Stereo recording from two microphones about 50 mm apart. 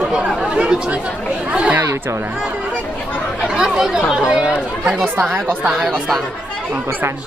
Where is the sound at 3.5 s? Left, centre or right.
Centre.